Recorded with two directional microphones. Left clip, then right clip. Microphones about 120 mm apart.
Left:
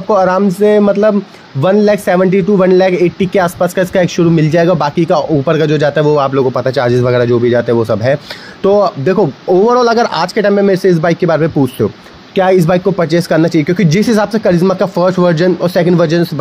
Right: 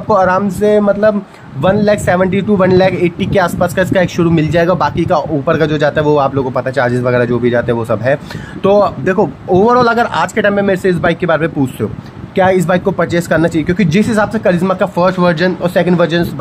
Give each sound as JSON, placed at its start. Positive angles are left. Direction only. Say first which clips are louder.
{"t": 0.1, "sound": "speech", "louder": "left 1 dB", "side_deg": 25}